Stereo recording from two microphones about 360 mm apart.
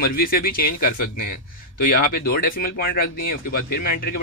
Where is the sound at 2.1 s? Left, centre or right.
Left.